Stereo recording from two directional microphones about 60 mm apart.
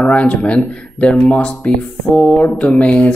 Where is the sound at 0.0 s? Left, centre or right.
Left.